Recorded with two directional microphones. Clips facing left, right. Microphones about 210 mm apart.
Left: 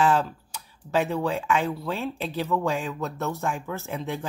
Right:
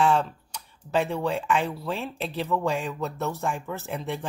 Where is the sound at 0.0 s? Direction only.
Centre (ahead or behind).